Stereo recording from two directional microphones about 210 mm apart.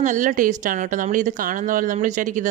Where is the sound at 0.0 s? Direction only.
40° right (ahead or behind).